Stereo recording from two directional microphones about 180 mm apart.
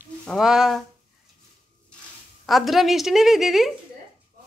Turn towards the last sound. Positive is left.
turn(degrees=0)  # may be behind; listen again after turning